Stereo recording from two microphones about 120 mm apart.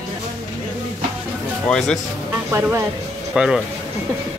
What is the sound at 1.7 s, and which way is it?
Speech, 5° left (ahead or behind).